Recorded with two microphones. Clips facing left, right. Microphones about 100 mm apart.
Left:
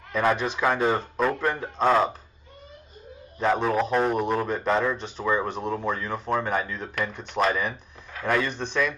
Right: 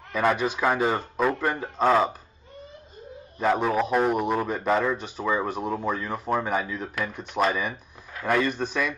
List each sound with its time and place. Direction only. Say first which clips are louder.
0.1 s a man's voice: even; 5° right (ahead or behind)
3.3 s a man's voice: even; 5° right (ahead or behind)